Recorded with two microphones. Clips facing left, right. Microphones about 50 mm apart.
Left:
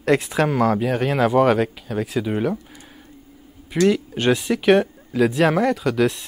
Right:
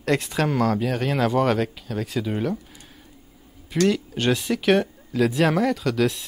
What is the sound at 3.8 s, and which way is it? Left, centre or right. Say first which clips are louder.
Speech: left 4 dB; centre.